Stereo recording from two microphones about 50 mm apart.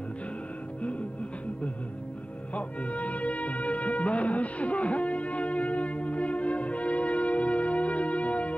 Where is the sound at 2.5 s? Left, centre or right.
Left.